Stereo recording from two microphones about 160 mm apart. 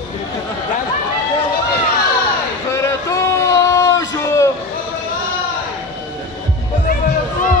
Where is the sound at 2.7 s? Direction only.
20° left (ahead or behind).